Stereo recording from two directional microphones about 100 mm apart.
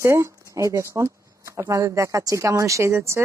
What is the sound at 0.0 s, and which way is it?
Speech, 30° right (ahead or behind).